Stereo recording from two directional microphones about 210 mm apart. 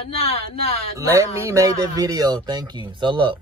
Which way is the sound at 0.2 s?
30° left (ahead or behind).